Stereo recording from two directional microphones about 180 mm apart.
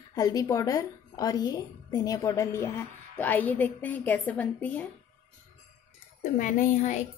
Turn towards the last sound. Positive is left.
turn(degrees=40)  # may be behind; listen again after turning